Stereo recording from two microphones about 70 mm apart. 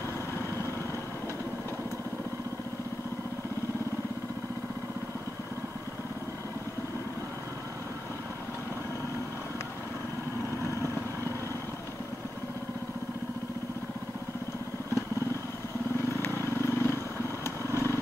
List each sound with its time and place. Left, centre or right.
16.2 s vehicle: left